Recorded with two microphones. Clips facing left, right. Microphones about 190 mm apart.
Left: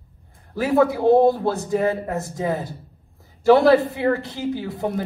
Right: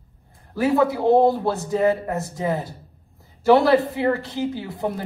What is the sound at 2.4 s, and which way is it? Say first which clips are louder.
A woman's voice: right 1 dB; 20° right (ahead or behind).